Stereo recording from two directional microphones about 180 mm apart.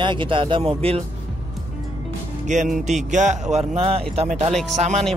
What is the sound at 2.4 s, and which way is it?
A man's voice, 40° right (ahead or behind).